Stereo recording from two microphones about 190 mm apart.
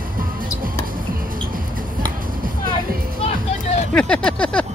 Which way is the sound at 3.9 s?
5° left (ahead or behind).